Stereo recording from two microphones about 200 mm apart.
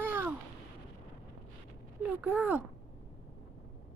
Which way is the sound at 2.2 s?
10° right (ahead or behind).